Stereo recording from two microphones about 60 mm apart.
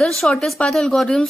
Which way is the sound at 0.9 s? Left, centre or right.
Centre.